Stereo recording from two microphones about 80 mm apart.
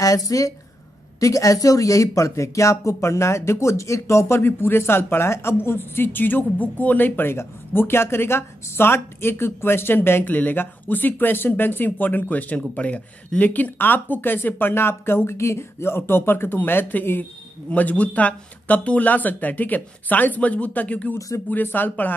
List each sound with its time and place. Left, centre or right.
0.0 s a woman's voice: left